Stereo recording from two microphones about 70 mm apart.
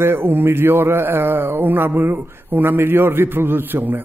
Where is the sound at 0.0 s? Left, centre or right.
Right.